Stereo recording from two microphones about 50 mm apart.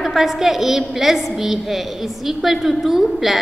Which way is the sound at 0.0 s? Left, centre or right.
Centre.